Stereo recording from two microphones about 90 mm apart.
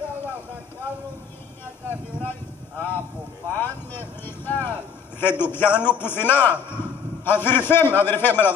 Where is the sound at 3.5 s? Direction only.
25° left (ahead or behind).